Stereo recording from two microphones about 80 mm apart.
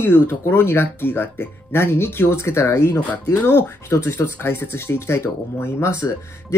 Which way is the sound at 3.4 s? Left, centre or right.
Left.